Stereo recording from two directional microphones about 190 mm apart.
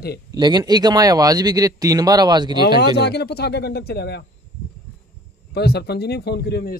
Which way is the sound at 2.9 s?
60° left (ahead or behind).